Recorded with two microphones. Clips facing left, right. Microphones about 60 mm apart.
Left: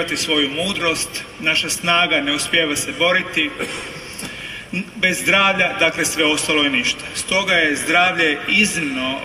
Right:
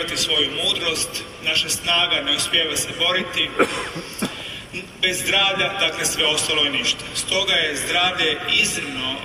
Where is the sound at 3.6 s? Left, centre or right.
Right.